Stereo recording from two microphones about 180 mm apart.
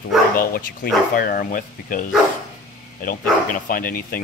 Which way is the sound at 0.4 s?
50° left (ahead or behind).